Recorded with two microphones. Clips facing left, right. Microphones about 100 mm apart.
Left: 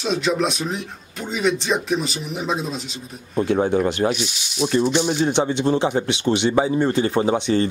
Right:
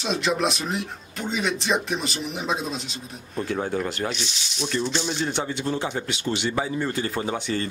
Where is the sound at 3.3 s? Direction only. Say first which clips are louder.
Left 8 dB; 20° left (ahead or behind).